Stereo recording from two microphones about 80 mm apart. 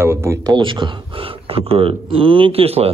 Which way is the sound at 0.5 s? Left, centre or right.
Right.